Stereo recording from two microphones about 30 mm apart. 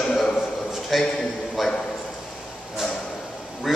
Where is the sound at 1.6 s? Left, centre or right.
Centre.